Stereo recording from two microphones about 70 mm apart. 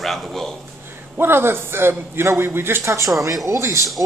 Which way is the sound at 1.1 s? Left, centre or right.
Right.